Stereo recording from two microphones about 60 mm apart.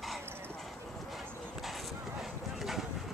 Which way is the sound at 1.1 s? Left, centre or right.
Centre.